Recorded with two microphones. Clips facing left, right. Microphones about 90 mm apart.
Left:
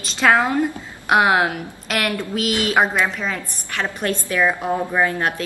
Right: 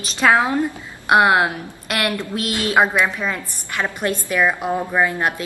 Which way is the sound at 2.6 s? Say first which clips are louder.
Right 2 dB; 20° right (ahead or behind).